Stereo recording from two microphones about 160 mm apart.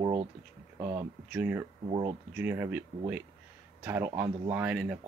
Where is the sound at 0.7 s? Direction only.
15° right (ahead or behind).